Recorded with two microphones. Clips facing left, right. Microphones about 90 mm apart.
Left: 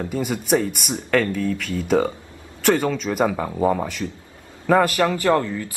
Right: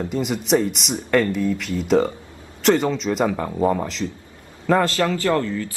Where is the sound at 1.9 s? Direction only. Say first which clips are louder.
Right 1 dB; 5° left (ahead or behind).